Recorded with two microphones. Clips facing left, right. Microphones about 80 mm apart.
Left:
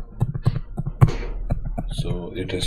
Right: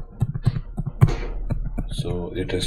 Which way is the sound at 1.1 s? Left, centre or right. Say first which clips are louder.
Right 1 dB; centre.